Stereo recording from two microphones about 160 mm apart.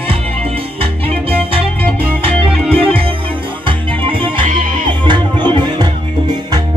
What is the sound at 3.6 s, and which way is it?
Music, 35° right (ahead or behind).